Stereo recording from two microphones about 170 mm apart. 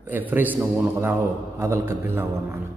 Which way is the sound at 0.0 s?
10° right (ahead or behind).